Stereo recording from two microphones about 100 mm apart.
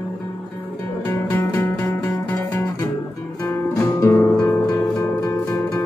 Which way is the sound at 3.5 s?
30° left (ahead or behind).